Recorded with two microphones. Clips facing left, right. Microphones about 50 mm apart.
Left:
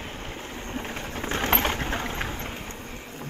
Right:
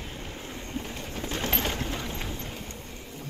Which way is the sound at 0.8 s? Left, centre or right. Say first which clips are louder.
Left 4 dB; left.